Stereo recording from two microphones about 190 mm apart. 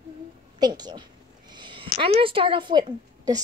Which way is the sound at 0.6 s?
20° right (ahead or behind).